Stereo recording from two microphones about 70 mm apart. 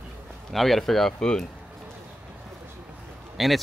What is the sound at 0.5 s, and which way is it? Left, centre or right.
Speech, centre.